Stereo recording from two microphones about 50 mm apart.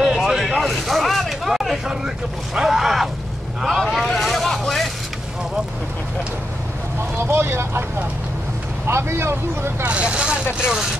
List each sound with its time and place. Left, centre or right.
0.0 s a sound: centre
0.4 s a sound: centre
1.9 s speech: centre
4.0 s vehicle: centre
7.2 s speech: right
8.8 s speech: right
9.8 s speech: right